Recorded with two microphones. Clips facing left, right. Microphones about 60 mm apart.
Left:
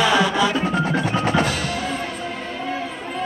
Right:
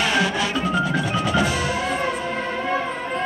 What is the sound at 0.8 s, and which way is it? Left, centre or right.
Percussion, left.